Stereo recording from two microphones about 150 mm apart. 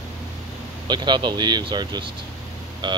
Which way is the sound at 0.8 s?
30° right (ahead or behind).